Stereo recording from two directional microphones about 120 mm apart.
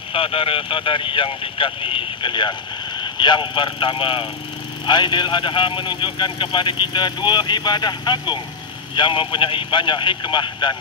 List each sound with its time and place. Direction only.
0.1 s speech: 50° left (ahead or behind)